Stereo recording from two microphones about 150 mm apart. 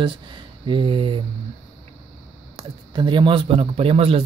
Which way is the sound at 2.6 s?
30° right (ahead or behind).